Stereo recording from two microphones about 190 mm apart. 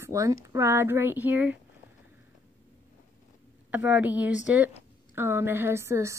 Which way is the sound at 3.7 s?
10° right (ahead or behind).